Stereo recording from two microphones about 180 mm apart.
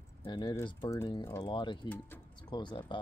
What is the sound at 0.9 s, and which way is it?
Speech, 15° left (ahead or behind).